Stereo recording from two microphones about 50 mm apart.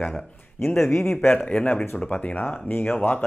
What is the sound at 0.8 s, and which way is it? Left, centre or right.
Speech, left.